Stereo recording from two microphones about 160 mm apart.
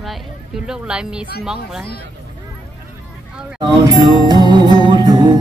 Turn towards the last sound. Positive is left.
turn(degrees=-25)  # may be behind; listen again after turning